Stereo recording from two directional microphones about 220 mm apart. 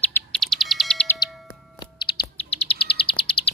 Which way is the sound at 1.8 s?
20° left (ahead or behind).